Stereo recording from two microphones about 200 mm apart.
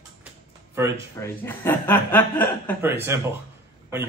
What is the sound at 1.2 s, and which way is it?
Speech, 10° left (ahead or behind).